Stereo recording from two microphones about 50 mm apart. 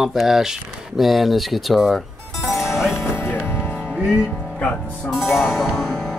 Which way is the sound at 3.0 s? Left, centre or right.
Left.